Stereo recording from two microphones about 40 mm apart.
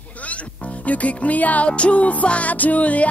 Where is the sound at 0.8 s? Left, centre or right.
Left.